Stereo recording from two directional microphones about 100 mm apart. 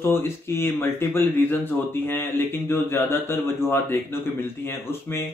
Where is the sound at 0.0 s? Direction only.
25° left (ahead or behind).